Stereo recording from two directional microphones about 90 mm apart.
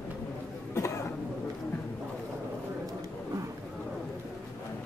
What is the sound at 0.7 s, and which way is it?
Cough, 35° left (ahead or behind).